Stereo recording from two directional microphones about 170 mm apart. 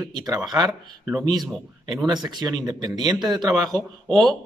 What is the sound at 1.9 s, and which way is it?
Speech, 25° right (ahead or behind).